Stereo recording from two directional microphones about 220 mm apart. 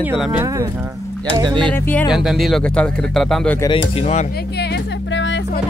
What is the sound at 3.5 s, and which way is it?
Speech, 15° left (ahead or behind).